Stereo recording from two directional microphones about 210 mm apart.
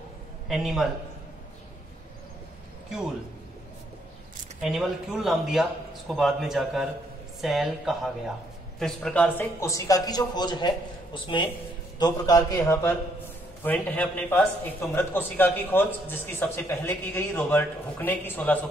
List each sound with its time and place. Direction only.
0.5 s a man's voice: centre (ahead or behind)
4.6 s a man's voice: 5° right (ahead or behind)